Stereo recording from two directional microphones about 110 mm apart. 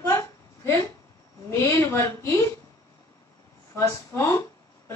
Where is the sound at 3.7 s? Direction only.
30° left (ahead or behind).